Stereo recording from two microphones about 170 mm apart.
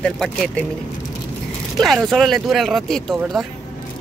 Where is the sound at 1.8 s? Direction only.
Centre (ahead or behind).